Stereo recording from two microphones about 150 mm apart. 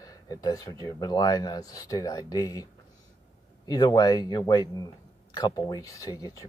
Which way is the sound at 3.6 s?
25° left (ahead or behind).